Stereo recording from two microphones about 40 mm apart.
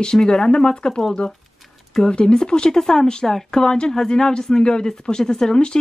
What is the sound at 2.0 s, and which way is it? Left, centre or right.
Speech, left.